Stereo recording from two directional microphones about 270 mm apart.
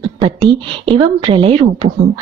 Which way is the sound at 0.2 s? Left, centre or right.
Centre.